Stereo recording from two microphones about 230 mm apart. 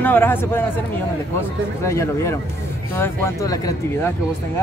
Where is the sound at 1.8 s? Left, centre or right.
Centre.